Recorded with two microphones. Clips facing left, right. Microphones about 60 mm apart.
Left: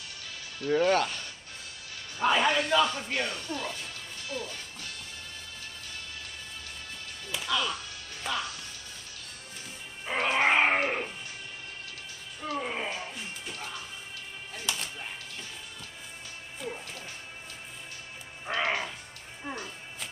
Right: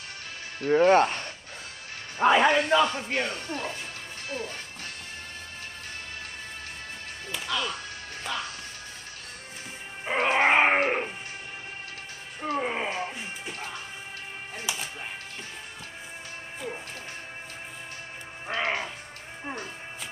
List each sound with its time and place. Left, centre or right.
0.6 s speech: right
4.3 s music: right
7.3 s whip: centre
7.6 s music: right
10.1 s music: right
10.4 s a sound: right
12.4 s music: right
12.9 s music: right
14.7 s music: centre
18.5 s music: right